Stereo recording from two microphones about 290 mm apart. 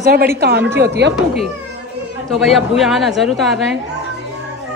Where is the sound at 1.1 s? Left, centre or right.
Centre.